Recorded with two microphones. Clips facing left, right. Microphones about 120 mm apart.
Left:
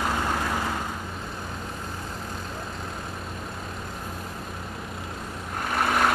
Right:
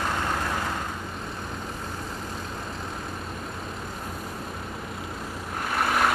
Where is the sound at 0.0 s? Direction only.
5° left (ahead or behind).